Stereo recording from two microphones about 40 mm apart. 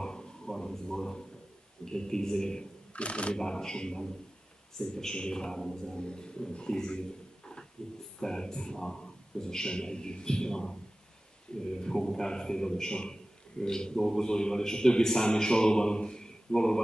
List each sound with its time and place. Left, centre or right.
0.0 s a sound: centre
1.9 s a man's voice: centre
2.9 s speech: left
3.3 s a man's voice: centre